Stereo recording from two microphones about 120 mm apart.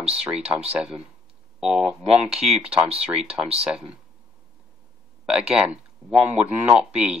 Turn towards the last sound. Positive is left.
turn(degrees=-5)  # may be behind; listen again after turning